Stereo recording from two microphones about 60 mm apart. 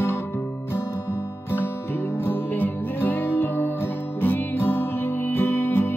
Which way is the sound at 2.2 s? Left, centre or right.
Left.